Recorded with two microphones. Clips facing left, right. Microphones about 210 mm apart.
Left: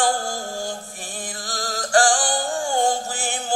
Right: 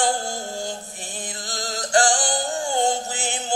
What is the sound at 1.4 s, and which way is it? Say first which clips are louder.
Music: left 1 dB; 20° right (ahead or behind).